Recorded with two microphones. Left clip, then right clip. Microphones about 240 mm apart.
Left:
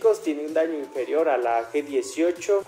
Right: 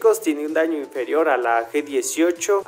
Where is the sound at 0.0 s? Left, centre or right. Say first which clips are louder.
Right 4 dB; right.